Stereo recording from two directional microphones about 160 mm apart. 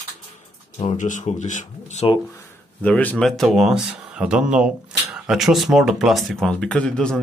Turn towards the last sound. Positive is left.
turn(degrees=5)  # may be behind; listen again after turning